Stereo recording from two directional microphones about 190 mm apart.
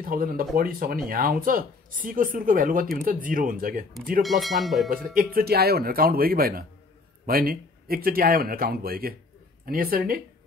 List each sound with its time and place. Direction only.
0.0 s speech: 50° right (ahead or behind)
4.2 s speech: centre (ahead or behind)
4.9 s speech: 50° right (ahead or behind)